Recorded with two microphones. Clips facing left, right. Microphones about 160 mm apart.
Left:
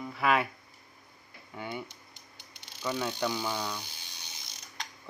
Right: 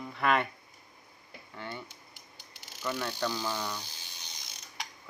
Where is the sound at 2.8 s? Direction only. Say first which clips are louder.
Left 2 dB; 15° left (ahead or behind).